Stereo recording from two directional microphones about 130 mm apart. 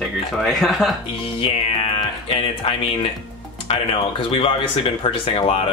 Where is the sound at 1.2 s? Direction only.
45° left (ahead or behind).